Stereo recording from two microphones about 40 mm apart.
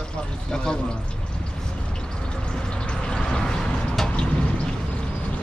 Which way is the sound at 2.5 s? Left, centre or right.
Left.